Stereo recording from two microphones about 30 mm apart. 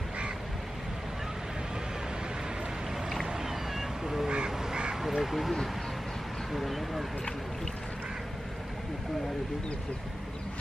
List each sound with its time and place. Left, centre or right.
3.3 s cat: centre
4.5 s crow: centre
5.0 s speech: centre